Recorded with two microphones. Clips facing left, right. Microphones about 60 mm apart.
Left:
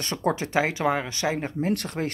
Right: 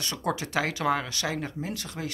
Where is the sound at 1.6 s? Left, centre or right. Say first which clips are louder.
Left 8 dB; left.